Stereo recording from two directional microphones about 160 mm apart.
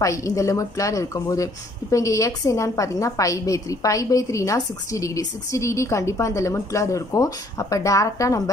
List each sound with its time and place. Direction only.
0.0 s a woman's voice: 20° left (ahead or behind)